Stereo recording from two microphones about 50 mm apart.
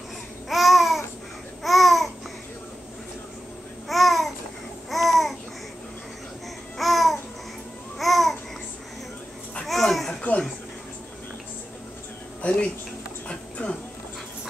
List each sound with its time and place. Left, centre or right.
0.5 s babbling: centre
3.9 s babbling: centre
6.8 s babbling: centre
9.7 s a sound: centre
12.4 s a sound: left
13.3 s music: left